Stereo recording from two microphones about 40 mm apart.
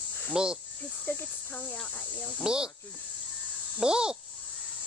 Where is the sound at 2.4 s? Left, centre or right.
Right.